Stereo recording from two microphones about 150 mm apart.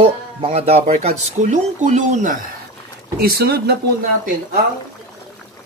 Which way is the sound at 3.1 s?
90° right.